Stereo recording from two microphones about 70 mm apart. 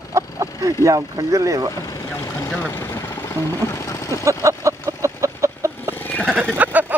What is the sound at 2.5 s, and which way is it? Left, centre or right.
Vehicle, left.